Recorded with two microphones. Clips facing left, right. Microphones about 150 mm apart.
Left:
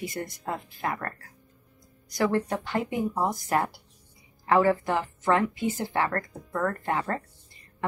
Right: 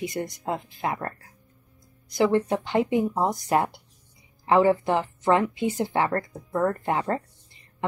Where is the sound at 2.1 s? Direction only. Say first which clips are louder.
Right 4 dB; 20° right (ahead or behind).